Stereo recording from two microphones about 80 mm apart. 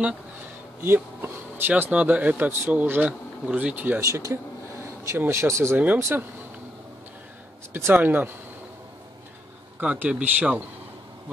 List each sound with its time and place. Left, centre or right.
0.8 s a sound: right
1.7 s speech: centre
4.0 s speech: right
7.7 s speech: right
9.8 s speech: centre